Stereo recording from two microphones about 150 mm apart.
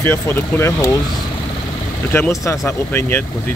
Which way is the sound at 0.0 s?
15° left (ahead or behind).